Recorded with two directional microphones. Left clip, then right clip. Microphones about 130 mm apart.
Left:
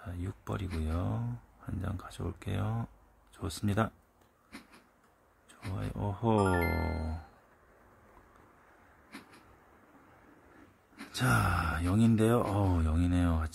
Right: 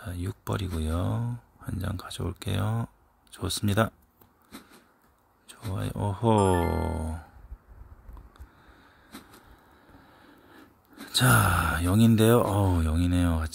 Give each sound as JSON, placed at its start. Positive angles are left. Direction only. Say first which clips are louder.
{"t": 0.0, "sound": "speech", "louder": "right 6 dB", "side_deg": -25}
{"t": 4.5, "sound": "a sound", "louder": "right 3 dB", "side_deg": 0}
{"t": 5.8, "sound": "speech", "louder": "right 6 dB", "side_deg": -25}
{"t": 9.1, "sound": "vehicle", "louder": "right 2 dB", "side_deg": 0}
{"t": 11.1, "sound": "speech", "louder": "right 7 dB", "side_deg": -35}
{"t": 12.5, "sound": "speech", "louder": "right 5 dB", "side_deg": -15}